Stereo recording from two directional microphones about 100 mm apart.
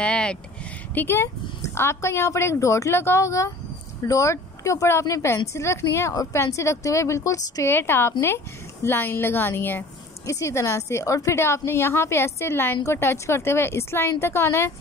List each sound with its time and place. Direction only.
0.0 s a sound: 10° left (ahead or behind)
0.9 s a woman's voice: 25° left (ahead or behind)
7.7 s a woman's voice: 25° left (ahead or behind)